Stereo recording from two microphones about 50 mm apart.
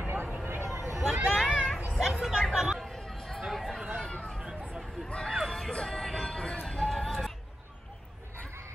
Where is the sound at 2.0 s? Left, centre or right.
Centre.